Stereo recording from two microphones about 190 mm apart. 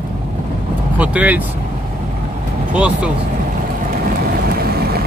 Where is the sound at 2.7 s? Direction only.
5° right (ahead or behind).